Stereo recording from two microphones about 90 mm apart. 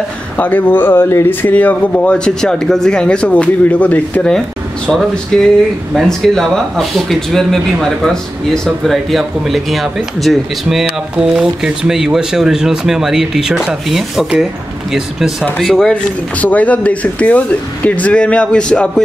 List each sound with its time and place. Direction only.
0.4 s speech: 20° left (ahead or behind)
16.3 s speech: 15° left (ahead or behind)